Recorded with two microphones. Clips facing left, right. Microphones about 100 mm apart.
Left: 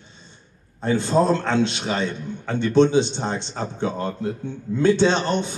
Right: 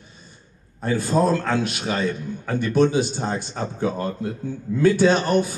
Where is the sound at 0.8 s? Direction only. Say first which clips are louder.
Left 1 dB; 25° left (ahead or behind).